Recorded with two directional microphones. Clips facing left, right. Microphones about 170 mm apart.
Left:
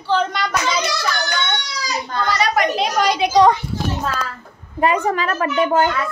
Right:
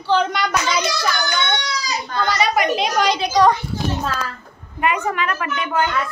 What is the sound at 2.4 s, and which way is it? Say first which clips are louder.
Speech: even; centre (ahead or behind).